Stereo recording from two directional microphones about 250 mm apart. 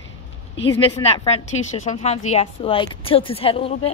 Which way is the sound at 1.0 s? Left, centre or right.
Left.